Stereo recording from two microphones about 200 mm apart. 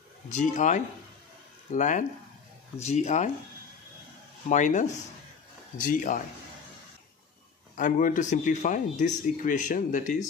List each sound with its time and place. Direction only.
0.3 s speech: 40° left (ahead or behind)
4.5 s speech: 40° left (ahead or behind)
7.7 s speech: 40° left (ahead or behind)